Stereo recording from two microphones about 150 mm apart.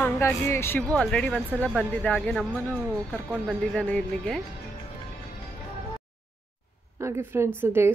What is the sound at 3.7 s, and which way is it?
Speech, 10° left (ahead or behind).